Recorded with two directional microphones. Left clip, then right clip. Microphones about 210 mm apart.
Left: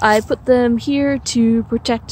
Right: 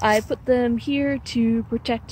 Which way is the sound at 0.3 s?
10° left (ahead or behind).